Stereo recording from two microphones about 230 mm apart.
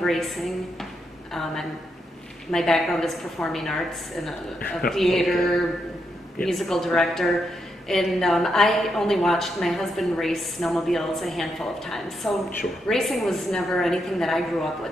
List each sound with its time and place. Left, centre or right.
0.0 s a woman's voice: centre